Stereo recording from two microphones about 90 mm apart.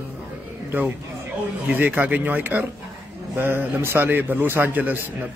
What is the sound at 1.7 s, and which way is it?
A man's voice, 20° right (ahead or behind).